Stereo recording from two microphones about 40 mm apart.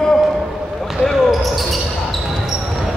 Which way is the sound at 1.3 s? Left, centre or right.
Centre.